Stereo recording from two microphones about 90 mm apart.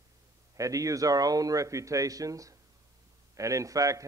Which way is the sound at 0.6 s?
40° right (ahead or behind).